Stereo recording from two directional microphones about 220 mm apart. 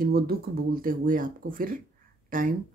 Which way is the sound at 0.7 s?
40° right (ahead or behind).